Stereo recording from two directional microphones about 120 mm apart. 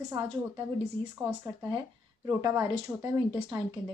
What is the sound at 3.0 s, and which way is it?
Speech, 15° right (ahead or behind).